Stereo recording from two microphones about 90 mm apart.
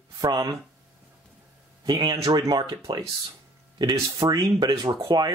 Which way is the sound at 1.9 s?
50° right (ahead or behind).